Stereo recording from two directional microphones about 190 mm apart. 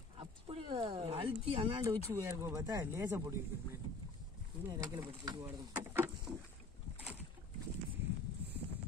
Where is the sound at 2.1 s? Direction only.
15° right (ahead or behind).